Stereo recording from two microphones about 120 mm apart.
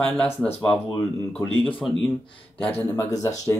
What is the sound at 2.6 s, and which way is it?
Speech, 10° left (ahead or behind).